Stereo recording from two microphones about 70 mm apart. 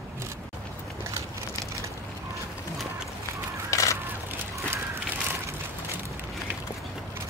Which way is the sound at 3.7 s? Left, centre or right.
Left.